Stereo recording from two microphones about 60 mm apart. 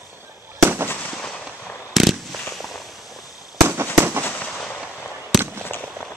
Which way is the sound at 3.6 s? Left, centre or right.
Right.